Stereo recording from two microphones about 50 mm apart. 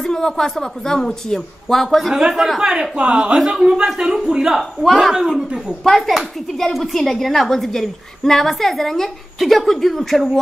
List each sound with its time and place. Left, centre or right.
0.0 s a woman's voice: centre
2.1 s speech: centre
5.9 s a woman's voice: centre